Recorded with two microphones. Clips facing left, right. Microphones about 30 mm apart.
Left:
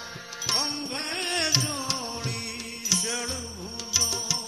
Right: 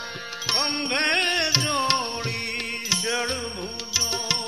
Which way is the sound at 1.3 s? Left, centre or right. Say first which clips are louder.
Right 3 dB; right.